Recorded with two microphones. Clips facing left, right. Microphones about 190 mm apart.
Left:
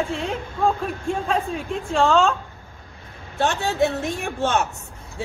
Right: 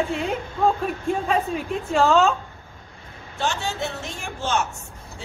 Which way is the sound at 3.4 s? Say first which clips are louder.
Left 6 dB; 60° left (ahead or behind).